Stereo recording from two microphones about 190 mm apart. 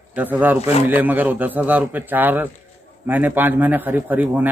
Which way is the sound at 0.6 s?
35° left (ahead or behind).